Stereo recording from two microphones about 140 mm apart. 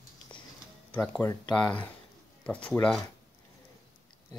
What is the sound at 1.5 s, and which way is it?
Speech, 5° left (ahead or behind).